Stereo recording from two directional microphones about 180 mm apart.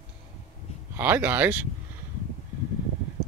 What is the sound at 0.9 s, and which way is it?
Speech, 10° right (ahead or behind).